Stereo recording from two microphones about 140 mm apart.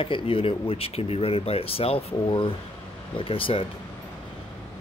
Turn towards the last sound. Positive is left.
turn(degrees=40)  # may be behind; listen again after turning